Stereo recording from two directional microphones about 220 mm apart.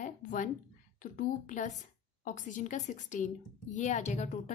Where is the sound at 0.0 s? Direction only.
35° left (ahead or behind).